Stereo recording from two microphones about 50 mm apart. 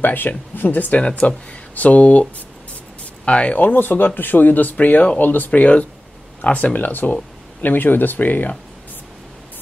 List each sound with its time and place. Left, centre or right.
0.0 s speech: left
3.3 s speech: left
3.5 s speech: left